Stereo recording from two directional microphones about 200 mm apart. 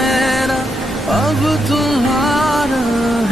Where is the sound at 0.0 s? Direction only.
Centre (ahead or behind).